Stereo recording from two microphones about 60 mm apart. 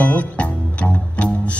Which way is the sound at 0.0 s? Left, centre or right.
Left.